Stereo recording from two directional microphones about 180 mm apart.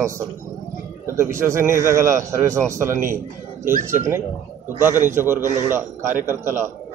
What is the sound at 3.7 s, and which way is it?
Speech, 45° right (ahead or behind).